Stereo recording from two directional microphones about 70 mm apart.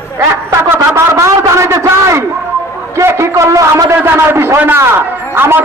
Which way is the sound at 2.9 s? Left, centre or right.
Right.